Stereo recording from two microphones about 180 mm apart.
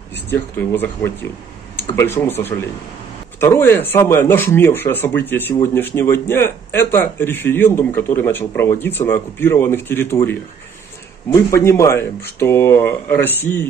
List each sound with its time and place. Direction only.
0.3 s a man's voice: 10° left (ahead or behind)
3.3 s a man's voice: 15° left (ahead or behind)